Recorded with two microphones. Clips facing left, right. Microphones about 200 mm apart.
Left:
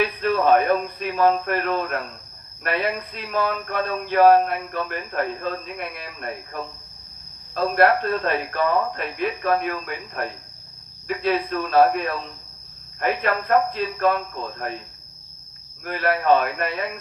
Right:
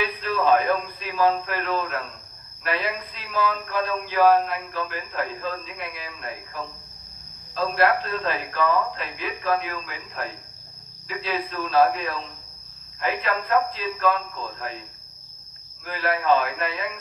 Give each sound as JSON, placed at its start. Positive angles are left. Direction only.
{"t": 0.0, "sound": "speech", "side_deg": 55}
{"t": 13.0, "sound": "speech", "side_deg": 55}
{"t": 15.8, "sound": "speech", "side_deg": 55}